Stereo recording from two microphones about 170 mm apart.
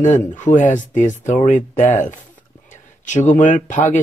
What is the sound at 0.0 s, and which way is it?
Speech, 45° left (ahead or behind).